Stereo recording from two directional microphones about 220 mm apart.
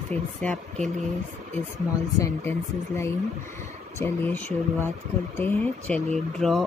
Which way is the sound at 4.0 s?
10° left (ahead or behind).